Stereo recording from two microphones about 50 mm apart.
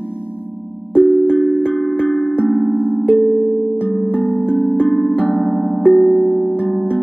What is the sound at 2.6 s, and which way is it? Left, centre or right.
Music, left.